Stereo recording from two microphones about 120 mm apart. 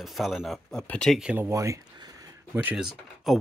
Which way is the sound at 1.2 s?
15° right (ahead or behind).